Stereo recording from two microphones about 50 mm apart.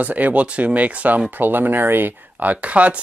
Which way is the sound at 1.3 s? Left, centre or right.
Right.